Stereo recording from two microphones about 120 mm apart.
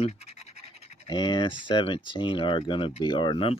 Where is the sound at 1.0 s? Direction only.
35° left (ahead or behind).